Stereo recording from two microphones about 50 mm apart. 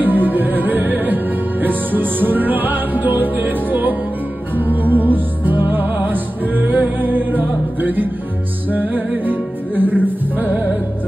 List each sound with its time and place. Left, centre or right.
0.0 s music: right